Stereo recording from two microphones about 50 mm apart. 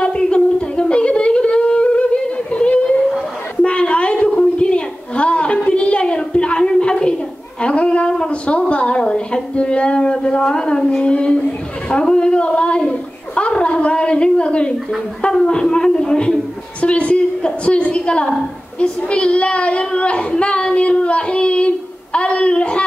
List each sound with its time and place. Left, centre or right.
0.0 s music: centre
3.6 s a sound: left
18.8 s child singing: left